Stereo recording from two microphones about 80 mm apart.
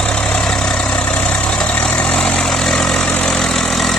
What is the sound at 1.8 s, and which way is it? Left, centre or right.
Vehicle, centre.